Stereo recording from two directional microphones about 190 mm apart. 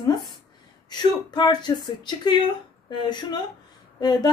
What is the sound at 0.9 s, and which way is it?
Speech, 20° left (ahead or behind).